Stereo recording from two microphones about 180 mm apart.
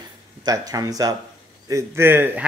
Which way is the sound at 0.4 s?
20° right (ahead or behind).